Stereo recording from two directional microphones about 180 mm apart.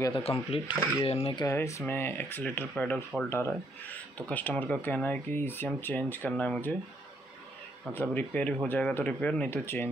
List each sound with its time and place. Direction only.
0.2 s speech: 30° left (ahead or behind)
1.4 s speech: 15° left (ahead or behind)
7.9 s speech: 10° left (ahead or behind)